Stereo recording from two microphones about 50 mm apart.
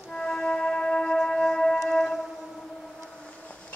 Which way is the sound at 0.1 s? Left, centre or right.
Centre.